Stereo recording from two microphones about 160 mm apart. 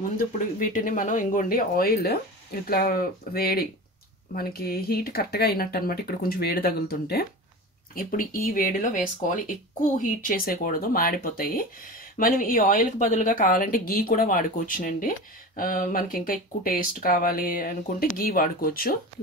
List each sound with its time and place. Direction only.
0.6 s a woman's voice: 55° left (ahead or behind); by 7.2 s 80° left
7.9 s a woman's voice: 60° left (ahead or behind)
10.0 s a woman's voice: 60° left (ahead or behind)